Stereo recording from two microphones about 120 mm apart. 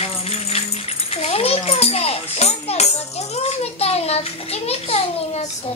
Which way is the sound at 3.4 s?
60° left (ahead or behind).